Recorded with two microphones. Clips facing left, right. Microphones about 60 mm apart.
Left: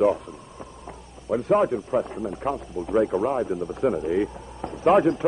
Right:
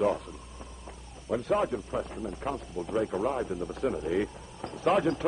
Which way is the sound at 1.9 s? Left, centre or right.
Left.